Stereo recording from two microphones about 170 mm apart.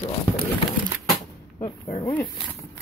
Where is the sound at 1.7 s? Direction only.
30° left (ahead or behind).